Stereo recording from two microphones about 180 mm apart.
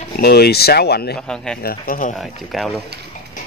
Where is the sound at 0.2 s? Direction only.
60° left (ahead or behind).